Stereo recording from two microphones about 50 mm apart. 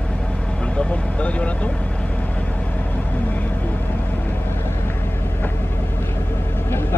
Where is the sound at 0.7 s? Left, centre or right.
Left.